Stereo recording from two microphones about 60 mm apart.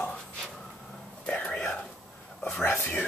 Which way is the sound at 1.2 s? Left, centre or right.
Centre.